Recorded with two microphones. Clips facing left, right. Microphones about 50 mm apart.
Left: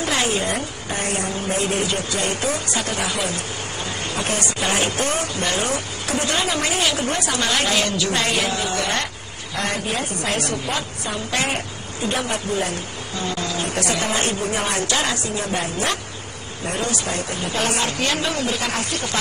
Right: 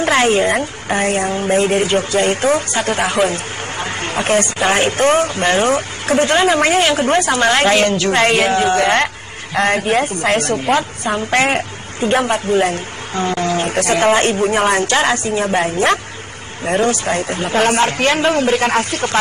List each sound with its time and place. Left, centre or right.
0.0 s a woman's voice: right